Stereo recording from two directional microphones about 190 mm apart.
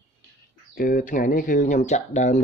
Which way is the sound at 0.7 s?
45° left (ahead or behind).